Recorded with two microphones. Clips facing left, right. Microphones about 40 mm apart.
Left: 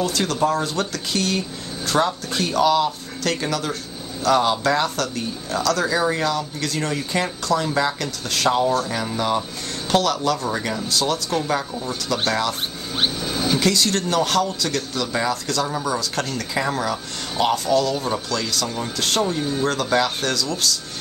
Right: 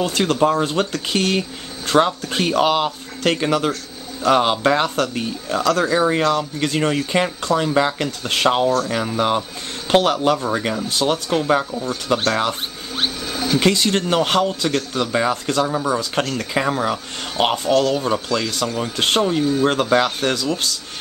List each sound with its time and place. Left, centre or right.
0.0 s speech: right
9.8 s speech: right
12.9 s music: centre
13.6 s speech: right
15.6 s speech: right